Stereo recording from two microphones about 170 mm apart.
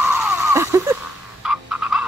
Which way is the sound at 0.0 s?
10° right (ahead or behind).